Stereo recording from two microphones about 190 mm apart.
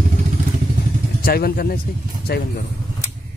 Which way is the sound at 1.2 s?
55° left (ahead or behind).